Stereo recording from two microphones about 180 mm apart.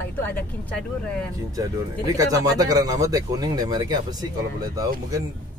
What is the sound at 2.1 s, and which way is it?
Speech, 20° right (ahead or behind).